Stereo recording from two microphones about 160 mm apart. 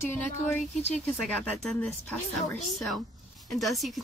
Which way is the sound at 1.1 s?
Centre (ahead or behind).